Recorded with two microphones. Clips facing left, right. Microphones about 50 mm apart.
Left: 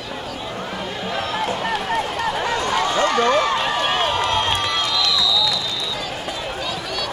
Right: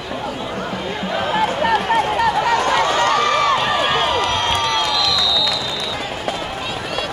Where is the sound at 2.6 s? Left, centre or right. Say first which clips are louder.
Right 3 dB; right.